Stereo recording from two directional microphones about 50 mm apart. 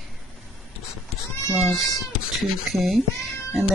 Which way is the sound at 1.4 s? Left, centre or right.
Centre.